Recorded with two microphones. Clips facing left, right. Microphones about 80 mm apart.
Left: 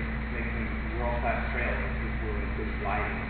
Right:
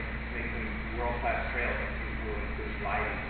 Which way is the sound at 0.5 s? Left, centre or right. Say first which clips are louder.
Left 2 dB; centre.